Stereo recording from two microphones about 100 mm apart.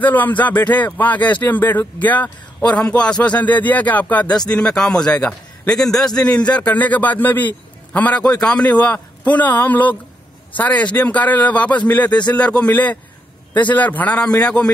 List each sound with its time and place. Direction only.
0.0 s speech: 15° left (ahead or behind)